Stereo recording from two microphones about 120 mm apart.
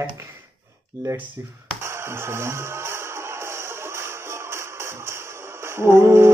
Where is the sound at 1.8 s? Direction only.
20° right (ahead or behind).